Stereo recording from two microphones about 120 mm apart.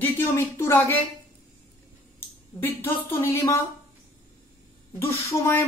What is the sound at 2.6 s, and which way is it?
A woman's voice, 15° left (ahead or behind).